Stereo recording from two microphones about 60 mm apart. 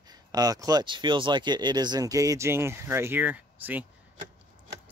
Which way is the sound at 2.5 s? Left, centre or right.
Right.